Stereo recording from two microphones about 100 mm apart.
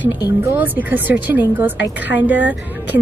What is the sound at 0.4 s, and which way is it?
A woman's voice, 20° right (ahead or behind).